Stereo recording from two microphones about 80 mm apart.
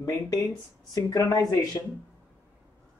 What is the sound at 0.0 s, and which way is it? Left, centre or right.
Speech, left.